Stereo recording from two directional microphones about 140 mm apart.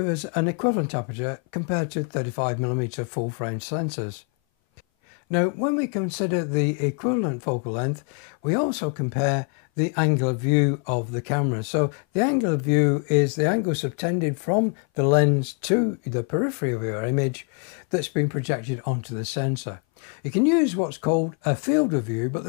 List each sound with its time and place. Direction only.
0.0 s speech: 15° left (ahead or behind)
5.3 s speech: 20° left (ahead or behind)